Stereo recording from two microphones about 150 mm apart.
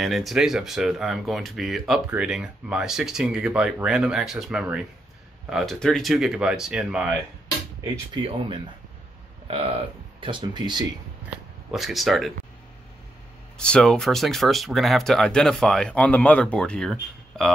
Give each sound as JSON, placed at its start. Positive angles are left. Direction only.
{"t": 0.0, "sound": "speech", "side_deg": 0}
{"t": 8.1, "sound": "speech", "side_deg": -35}
{"t": 11.7, "sound": "speech", "side_deg": 0}
{"t": 13.6, "sound": "speech", "side_deg": 5}